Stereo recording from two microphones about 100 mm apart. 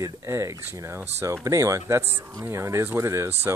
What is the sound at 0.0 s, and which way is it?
Speech, 30° right (ahead or behind).